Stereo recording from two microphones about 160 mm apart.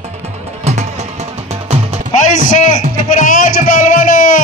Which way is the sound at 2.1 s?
50° left (ahead or behind).